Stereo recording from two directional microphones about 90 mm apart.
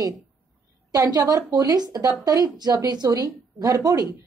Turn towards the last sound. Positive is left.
turn(degrees=-45)  # may be behind; listen again after turning